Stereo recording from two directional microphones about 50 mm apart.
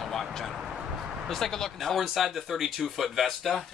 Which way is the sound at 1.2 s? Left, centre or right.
Centre.